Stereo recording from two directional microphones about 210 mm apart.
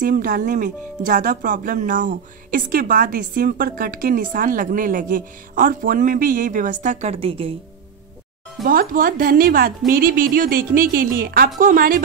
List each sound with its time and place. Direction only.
0.0 s speech: 40° right (ahead or behind)
8.6 s a woman's voice: 40° right (ahead or behind)